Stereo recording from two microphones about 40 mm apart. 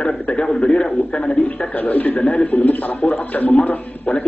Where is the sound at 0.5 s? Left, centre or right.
Left.